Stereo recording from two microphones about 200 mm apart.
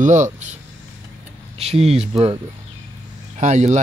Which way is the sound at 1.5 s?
30° right (ahead or behind).